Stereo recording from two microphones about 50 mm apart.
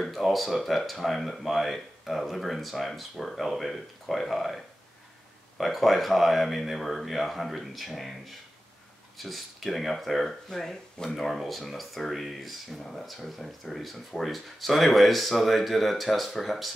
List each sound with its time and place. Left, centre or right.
0.0 s speech: centre